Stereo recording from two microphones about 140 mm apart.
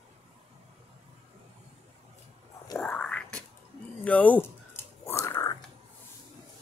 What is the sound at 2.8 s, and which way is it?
Whispering, 10° left (ahead or behind).